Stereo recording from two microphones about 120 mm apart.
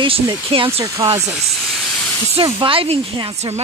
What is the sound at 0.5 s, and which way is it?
Speech, 55° right (ahead or behind).